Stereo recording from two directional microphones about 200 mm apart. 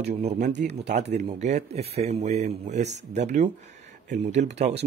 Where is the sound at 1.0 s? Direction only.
35° right (ahead or behind).